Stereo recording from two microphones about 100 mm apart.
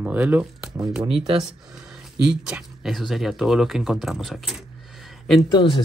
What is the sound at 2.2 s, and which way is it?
Speech, 5° right (ahead or behind).